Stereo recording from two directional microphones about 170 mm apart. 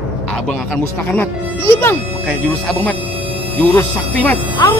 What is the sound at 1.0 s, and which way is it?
Speech, 10° left (ahead or behind).